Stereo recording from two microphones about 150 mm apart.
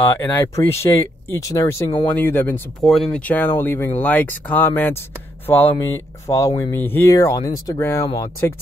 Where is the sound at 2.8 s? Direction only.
Centre (ahead or behind).